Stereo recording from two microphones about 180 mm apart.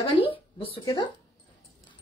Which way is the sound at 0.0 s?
30° left (ahead or behind).